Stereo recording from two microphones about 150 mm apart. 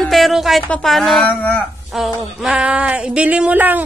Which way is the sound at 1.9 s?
Centre (ahead or behind).